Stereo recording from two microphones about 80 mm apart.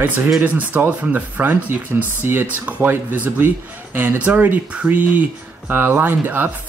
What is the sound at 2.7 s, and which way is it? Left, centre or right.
Speech, right.